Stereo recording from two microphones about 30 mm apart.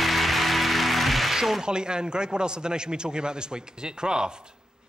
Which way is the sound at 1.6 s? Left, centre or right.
Right.